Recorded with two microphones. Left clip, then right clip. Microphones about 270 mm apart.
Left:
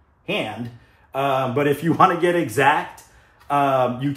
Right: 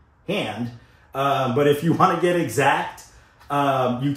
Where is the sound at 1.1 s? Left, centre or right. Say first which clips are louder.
Even; centre.